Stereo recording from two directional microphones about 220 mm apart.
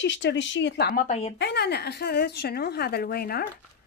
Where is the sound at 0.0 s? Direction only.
55° left (ahead or behind); by 1.3 s 30° left (ahead or behind).